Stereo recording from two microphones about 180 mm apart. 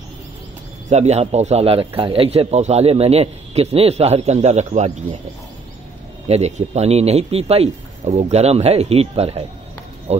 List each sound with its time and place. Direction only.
0.8 s speech: 40° right (ahead or behind)
6.2 s speech: 35° right (ahead or behind)